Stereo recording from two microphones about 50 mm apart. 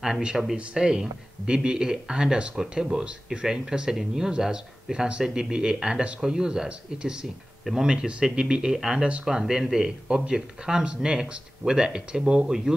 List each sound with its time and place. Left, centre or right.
0.6 s speech: centre
9.2 s speech: centre